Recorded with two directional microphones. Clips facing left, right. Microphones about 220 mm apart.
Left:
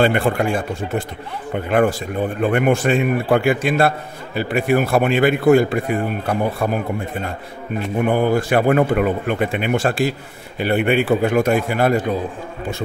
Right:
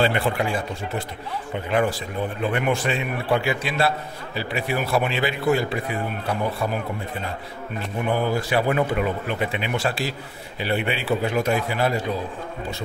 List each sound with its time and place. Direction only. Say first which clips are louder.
0.0 s a man's voice: left 5 dB; 50° left (ahead or behind)
8.0 s a man's voice: left 6 dB; 55° left (ahead or behind)